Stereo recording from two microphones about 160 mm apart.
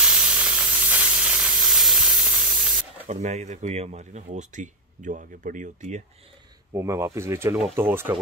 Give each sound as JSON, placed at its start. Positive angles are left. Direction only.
{"t": 0.0, "sound": "steam", "side_deg": -5}
{"t": 3.1, "sound": "speech", "side_deg": -45}
{"t": 6.7, "sound": "speech", "side_deg": -20}